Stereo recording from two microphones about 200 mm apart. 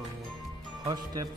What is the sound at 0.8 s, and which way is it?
Speech, 20° right (ahead or behind).